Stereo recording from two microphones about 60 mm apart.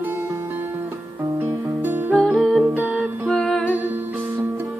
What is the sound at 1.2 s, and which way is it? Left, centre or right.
Music, right.